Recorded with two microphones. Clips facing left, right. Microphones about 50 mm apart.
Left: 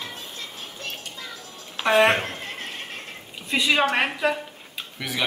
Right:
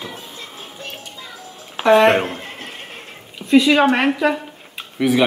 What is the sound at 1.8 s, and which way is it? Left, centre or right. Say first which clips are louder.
Speech: right 6 dB; centre.